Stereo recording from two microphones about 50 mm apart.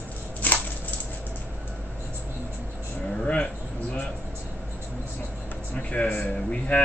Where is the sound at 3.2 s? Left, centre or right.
Left.